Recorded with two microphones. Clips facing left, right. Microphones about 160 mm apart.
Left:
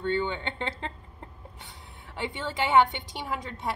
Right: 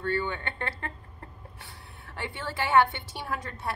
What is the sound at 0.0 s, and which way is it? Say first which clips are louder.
A woman's voice: left 2 dB; 20° left (ahead or behind).